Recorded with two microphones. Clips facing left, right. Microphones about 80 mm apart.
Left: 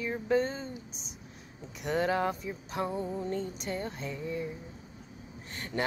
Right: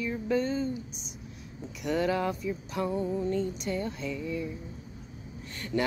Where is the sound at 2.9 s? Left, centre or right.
Left.